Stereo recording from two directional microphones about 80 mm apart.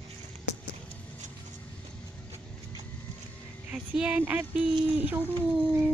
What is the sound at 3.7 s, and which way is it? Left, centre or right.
Speech, centre.